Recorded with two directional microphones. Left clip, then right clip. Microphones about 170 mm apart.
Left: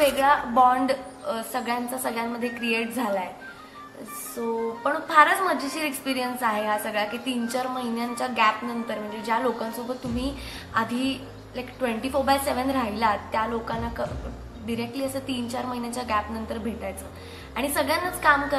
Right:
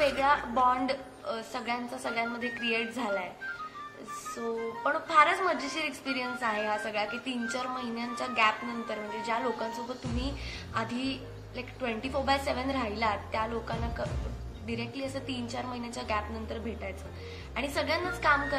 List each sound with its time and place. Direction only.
0.0 s a woman's voice: 15° left (ahead or behind)
4.8 s a woman's voice: 20° left (ahead or behind)